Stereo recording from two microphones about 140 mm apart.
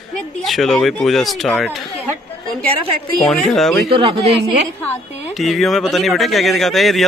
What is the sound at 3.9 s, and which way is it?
Speech, 40° right (ahead or behind).